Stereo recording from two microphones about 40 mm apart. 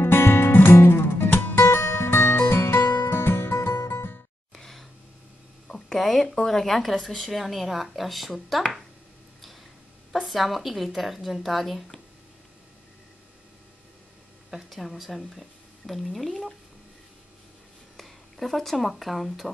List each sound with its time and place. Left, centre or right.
0.0 s music: left
4.6 s a sound: centre
5.7 s a woman's voice: centre
10.2 s a woman's voice: centre
14.7 s a woman's voice: centre
17.9 s speech: centre